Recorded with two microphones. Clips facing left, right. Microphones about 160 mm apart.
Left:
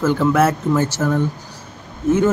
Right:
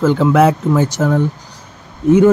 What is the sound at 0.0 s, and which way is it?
Speech, 15° right (ahead or behind).